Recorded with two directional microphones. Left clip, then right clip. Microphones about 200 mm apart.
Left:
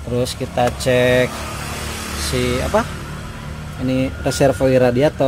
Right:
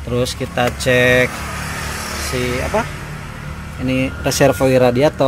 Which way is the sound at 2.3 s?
15° left (ahead or behind).